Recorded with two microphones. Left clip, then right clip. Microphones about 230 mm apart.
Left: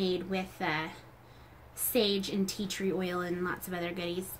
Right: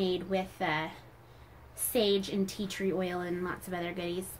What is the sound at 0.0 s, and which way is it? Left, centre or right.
A woman's voice, centre.